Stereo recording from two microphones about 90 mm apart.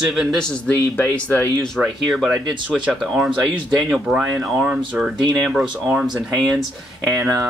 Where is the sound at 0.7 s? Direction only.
20° left (ahead or behind).